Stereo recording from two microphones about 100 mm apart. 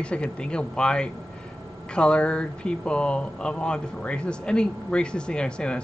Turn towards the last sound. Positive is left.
turn(degrees=10)  # may be behind; listen again after turning